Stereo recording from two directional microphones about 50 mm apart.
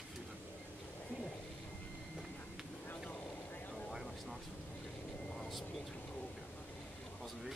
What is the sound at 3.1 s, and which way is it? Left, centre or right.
Vehicle, left.